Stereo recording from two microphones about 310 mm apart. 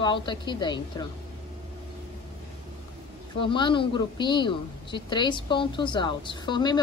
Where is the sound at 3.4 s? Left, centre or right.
Centre.